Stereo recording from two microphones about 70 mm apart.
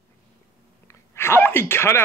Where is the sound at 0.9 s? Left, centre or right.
Left.